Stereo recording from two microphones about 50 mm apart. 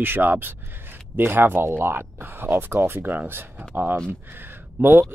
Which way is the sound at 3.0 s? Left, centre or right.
Right.